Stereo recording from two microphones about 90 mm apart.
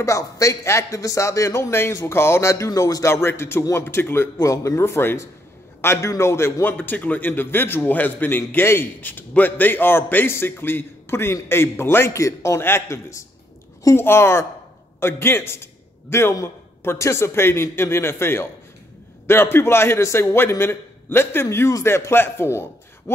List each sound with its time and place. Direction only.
0.0 s a man's voice: 35° left (ahead or behind)